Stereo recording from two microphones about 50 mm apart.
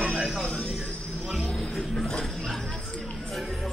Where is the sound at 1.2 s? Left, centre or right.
Centre.